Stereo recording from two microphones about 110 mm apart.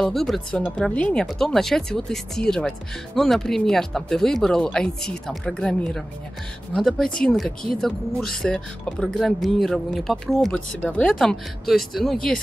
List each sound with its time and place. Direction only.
0.0 s speech: 5° left (ahead or behind)